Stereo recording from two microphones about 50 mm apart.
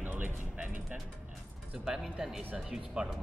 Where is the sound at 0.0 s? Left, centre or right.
Right.